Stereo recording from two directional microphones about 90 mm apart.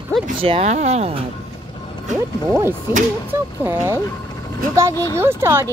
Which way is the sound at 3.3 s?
30° right (ahead or behind).